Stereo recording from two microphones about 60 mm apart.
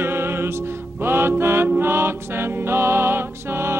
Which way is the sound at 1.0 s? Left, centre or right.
Right.